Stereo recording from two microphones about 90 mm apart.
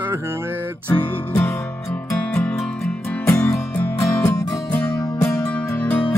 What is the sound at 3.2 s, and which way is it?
Music, 30° left (ahead or behind).